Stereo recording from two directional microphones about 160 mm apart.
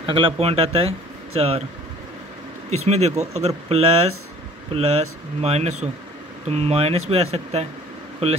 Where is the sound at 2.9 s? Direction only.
45° right (ahead or behind).